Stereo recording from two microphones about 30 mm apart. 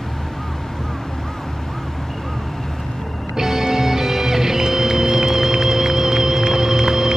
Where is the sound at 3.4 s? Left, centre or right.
Centre.